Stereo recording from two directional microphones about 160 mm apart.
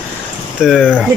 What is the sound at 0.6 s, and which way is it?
Speech, 5° right (ahead or behind).